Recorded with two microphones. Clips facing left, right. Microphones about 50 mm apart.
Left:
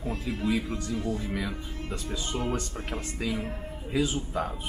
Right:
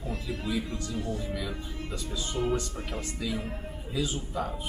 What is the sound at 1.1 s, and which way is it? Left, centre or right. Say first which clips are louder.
A man's voice: left 2 dB; left.